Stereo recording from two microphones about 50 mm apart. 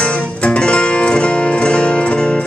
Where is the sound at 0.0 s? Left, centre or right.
Centre.